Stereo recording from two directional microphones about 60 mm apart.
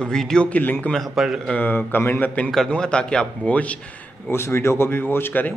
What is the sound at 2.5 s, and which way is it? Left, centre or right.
A man's voice, centre.